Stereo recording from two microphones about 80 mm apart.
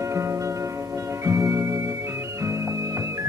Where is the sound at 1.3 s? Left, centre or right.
Right.